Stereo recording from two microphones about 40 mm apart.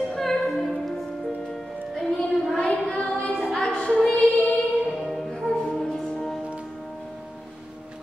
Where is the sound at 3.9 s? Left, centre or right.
Left.